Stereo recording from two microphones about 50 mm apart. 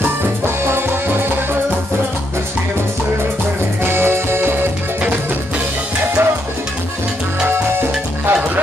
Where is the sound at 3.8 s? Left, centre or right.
Right.